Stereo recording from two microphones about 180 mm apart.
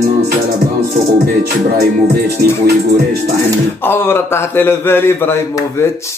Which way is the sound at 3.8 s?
10° left (ahead or behind).